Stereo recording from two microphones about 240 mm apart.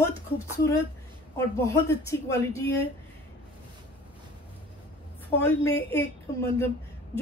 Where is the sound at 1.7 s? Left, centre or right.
Centre.